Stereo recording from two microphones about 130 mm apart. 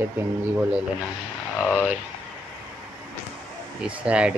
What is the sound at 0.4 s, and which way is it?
Speech, 10° right (ahead or behind).